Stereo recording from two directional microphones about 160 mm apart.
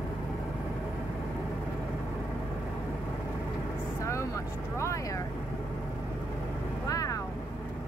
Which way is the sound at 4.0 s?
20° left (ahead or behind).